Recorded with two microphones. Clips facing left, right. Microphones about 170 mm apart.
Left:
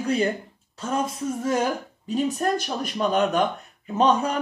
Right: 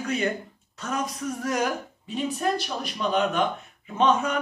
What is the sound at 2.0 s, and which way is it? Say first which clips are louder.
Speech: left 3 dB; 40° left (ahead or behind).